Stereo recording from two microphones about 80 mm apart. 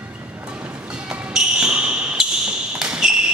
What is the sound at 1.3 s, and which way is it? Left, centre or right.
Basketball bounce, centre.